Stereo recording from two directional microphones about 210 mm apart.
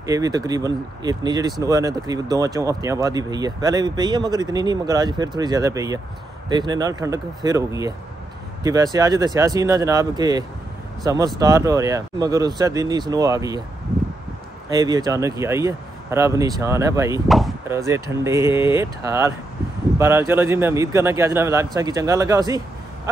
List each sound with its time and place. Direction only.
0.0 s speech: 15° right (ahead or behind)
14.7 s speech: 20° right (ahead or behind)